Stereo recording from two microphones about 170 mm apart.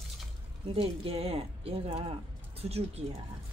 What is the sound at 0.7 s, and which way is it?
Speech, 35° right (ahead or behind).